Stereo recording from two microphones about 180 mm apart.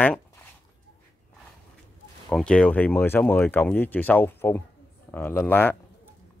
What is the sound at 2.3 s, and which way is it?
Speech, 5° left (ahead or behind).